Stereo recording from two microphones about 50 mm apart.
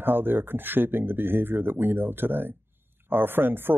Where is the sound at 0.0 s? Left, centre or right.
Right.